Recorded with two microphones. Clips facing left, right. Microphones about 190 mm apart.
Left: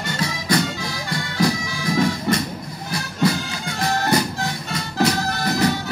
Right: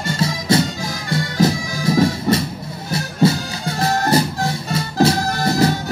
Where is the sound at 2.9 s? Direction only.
25° right (ahead or behind).